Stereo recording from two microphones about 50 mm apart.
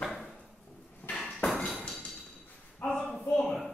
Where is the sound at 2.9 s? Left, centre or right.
Centre.